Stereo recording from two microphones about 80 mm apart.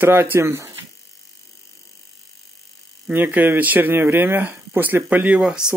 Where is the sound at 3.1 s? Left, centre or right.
Right.